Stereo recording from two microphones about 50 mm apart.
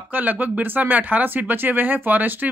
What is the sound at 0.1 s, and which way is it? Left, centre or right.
Speech, right.